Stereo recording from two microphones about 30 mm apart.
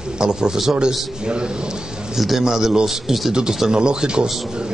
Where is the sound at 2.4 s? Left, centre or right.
Centre.